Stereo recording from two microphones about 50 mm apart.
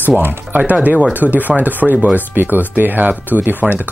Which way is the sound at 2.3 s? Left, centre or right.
Right.